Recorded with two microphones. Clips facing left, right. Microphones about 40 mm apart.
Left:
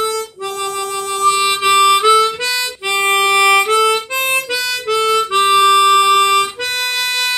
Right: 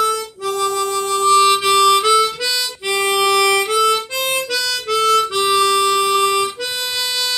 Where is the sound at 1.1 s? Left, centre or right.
Centre.